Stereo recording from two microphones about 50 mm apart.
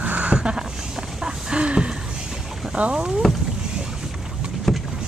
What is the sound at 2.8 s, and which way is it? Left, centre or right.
Speech, right.